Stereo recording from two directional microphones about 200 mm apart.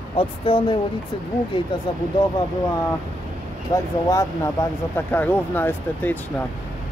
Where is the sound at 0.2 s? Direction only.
25° left (ahead or behind).